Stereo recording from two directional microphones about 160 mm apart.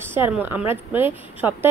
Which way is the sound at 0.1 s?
15° right (ahead or behind).